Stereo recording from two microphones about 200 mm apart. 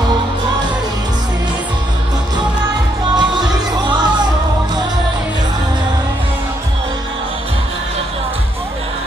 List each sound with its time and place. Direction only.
3.2 s music: 20° right (ahead or behind)